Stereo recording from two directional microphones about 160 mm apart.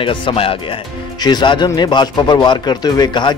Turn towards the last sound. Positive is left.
turn(degrees=25)  # may be behind; listen again after turning